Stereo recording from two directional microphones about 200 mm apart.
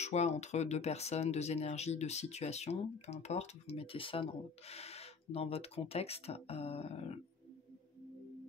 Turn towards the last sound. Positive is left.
turn(degrees=30)  # may be behind; listen again after turning